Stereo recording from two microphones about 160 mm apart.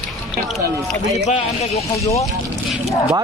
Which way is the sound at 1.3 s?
40° left (ahead or behind).